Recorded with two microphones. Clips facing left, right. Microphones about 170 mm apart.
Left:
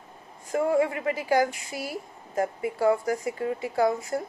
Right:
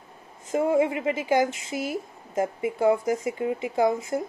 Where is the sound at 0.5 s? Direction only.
20° right (ahead or behind).